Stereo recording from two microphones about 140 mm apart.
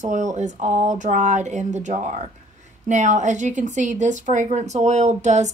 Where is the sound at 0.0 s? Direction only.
60° right (ahead or behind).